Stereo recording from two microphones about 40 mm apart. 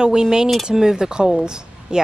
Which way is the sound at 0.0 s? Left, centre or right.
Centre.